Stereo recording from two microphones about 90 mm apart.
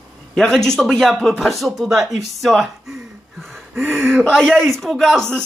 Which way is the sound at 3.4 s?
Centre (ahead or behind).